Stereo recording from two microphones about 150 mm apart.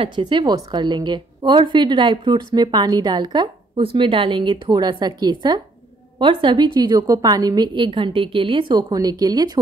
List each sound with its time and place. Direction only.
0.0 s a woman's voice: 30° right (ahead or behind)